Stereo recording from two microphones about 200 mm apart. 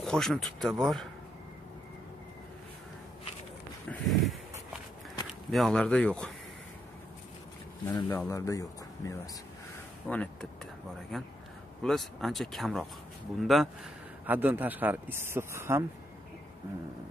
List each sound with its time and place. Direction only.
0.0 s speech: centre (ahead or behind)
3.9 s a sound: centre (ahead or behind)
5.5 s speech: 5° left (ahead or behind)
7.8 s speech: 10° left (ahead or behind); by 15.8 s 15° right (ahead or behind)